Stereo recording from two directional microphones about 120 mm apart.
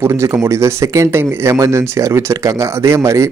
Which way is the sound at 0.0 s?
20° right (ahead or behind).